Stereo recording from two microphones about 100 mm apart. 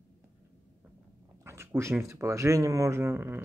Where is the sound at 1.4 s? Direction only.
25° right (ahead or behind).